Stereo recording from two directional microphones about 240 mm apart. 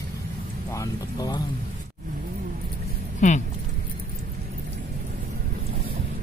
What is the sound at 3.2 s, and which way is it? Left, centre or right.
Speech, left.